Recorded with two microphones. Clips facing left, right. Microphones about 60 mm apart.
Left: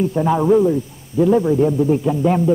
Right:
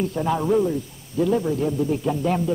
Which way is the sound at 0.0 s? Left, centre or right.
Centre.